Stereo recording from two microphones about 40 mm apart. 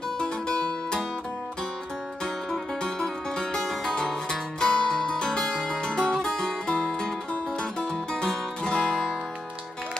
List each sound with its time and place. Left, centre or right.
0.2 s music: left
2.5 s music: centre
8.1 s music: centre